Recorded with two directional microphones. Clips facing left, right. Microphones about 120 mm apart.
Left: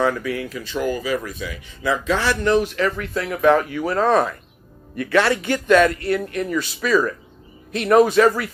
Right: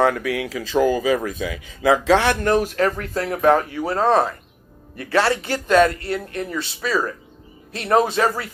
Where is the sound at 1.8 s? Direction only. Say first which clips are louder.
Right 5 dB; 90° right.